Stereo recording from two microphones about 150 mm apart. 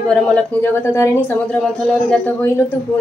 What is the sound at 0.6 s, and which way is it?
Speech, 15° left (ahead or behind).